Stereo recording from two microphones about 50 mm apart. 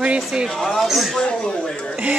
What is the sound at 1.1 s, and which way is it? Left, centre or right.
Speech, centre.